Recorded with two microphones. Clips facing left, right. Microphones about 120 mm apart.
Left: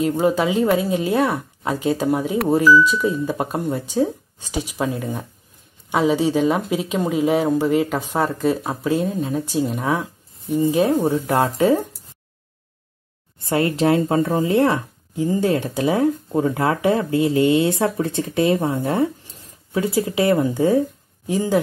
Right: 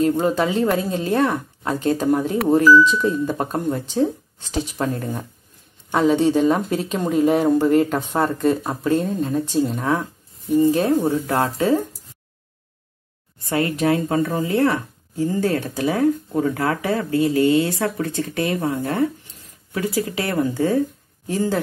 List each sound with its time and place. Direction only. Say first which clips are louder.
0.0 s speech: even; 10° left (ahead or behind)
13.4 s speech: left 2 dB; 25° left (ahead or behind)